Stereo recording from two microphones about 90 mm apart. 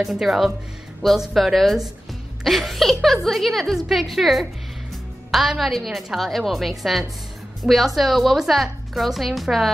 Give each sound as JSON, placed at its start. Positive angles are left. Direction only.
{"t": 0.0, "sound": "a woman's voice", "side_deg": 0}